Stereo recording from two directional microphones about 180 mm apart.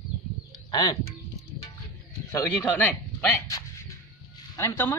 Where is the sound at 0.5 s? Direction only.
25° left (ahead or behind).